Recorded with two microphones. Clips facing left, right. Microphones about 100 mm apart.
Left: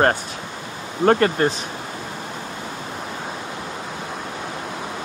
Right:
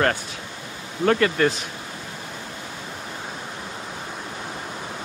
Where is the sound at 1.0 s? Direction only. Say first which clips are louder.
Left 3 dB; 40° left (ahead or behind).